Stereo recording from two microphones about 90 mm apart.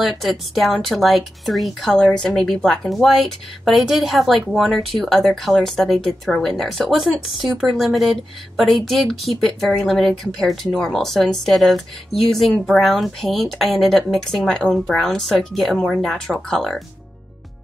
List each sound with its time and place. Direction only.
0.0 s speech: centre (ahead or behind)